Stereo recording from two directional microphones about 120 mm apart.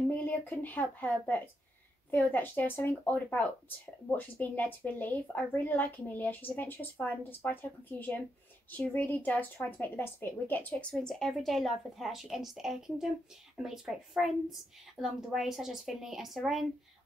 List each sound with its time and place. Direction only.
0.1 s a woman's voice: 15° left (ahead or behind); by 16.6 s centre (ahead or behind)